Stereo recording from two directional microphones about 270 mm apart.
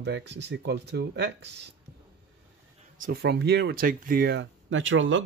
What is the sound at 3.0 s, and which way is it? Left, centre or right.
Speech, right.